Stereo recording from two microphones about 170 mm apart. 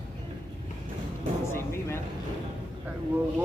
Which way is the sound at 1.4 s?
15° left (ahead or behind).